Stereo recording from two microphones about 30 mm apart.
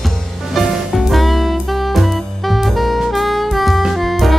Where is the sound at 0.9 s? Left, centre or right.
Centre.